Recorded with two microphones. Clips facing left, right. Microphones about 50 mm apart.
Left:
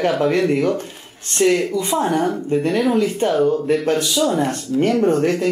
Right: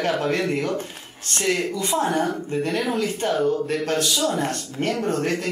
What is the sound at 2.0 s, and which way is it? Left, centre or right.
Speech, centre.